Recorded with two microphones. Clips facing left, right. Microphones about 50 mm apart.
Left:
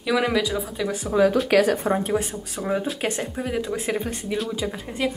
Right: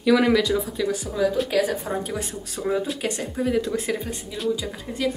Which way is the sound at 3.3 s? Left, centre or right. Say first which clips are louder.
Right 3 dB; centre.